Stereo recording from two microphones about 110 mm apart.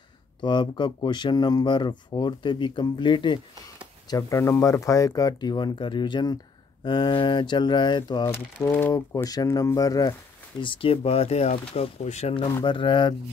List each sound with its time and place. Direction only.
0.4 s speech: 45° left (ahead or behind)
4.1 s speech: 25° left (ahead or behind); by 8.3 s 45° left (ahead or behind)
8.3 s speech: 25° left (ahead or behind)
10.6 s speech: 55° left (ahead or behind); by 12.4 s 85° left
12.6 s speech: 50° left (ahead or behind)